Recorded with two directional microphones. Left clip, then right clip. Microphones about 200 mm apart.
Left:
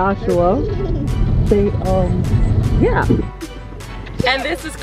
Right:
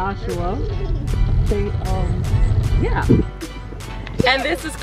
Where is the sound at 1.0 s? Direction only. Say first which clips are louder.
Left 5 dB; centre (ahead or behind).